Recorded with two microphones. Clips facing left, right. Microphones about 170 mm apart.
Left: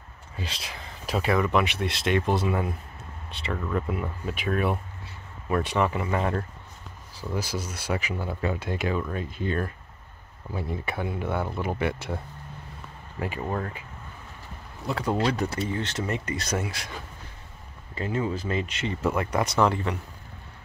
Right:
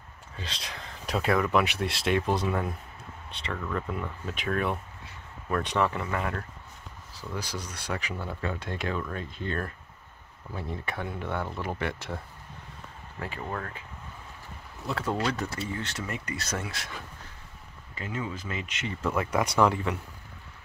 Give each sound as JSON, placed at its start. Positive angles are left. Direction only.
{"t": 0.4, "sound": "speech", "side_deg": 5}
{"t": 6.0, "sound": "speech", "side_deg": 25}
{"t": 7.2, "sound": "speech", "side_deg": 10}
{"t": 13.2, "sound": "speech", "side_deg": 15}
{"t": 15.0, "sound": "speech", "side_deg": 25}
{"t": 16.6, "sound": "speech", "side_deg": 0}
{"t": 17.9, "sound": "speech", "side_deg": 35}
{"t": 19.1, "sound": "speech", "side_deg": -10}